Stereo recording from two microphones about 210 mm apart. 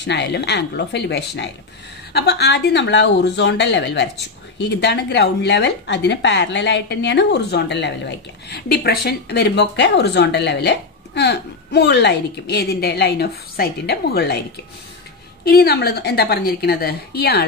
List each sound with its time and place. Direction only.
0.0 s a woman's voice: 55° left (ahead or behind)
15.4 s a woman's voice: 50° left (ahead or behind)